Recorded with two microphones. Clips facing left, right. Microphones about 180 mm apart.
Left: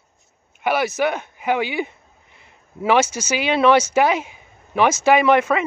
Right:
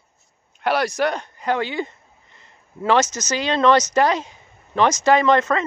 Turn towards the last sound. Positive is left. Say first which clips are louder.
# left 1 dB
turn(degrees=10)  # may be behind; listen again after turning